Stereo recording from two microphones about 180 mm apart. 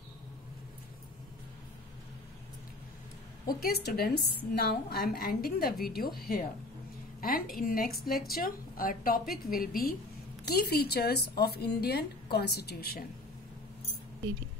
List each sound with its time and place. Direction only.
3.4 s a woman's voice: 60° left (ahead or behind)